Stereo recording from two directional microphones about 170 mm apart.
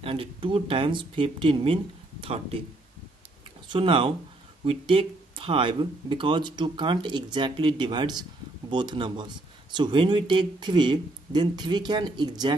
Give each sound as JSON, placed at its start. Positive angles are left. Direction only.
{"t": 0.0, "sound": "speech", "side_deg": -30}
{"t": 3.6, "sound": "speech", "side_deg": -30}